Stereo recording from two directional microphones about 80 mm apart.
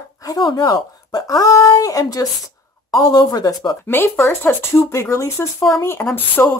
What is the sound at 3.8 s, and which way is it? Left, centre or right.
Speech, left.